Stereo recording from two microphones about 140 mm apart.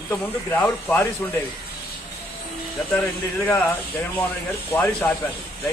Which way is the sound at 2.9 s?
15° left (ahead or behind).